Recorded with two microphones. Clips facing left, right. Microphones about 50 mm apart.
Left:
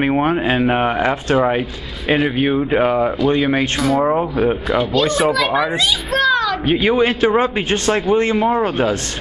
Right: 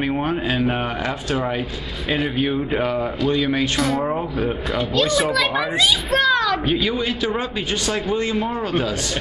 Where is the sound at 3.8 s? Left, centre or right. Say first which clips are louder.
Left 4 dB; centre.